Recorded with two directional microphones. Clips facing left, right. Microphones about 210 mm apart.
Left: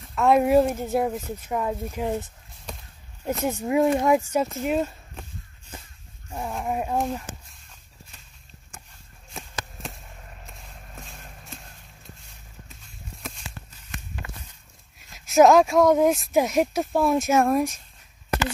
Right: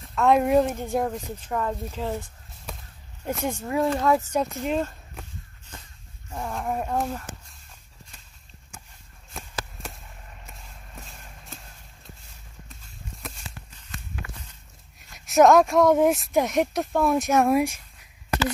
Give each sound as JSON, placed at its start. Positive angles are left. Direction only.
{"t": 0.1, "sound": "speech", "side_deg": 0}
{"t": 3.3, "sound": "speech", "side_deg": 5}
{"t": 3.6, "sound": "speech", "side_deg": 20}
{"t": 6.3, "sound": "speech", "side_deg": 10}
{"t": 15.0, "sound": "speech", "side_deg": 0}
{"t": 17.6, "sound": "speech", "side_deg": -10}